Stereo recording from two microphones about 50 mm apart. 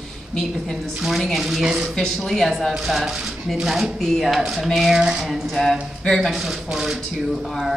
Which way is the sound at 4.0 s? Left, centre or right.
Centre.